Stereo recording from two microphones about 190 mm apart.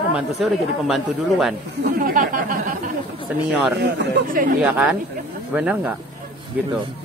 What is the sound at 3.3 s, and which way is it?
Speech, 10° right (ahead or behind).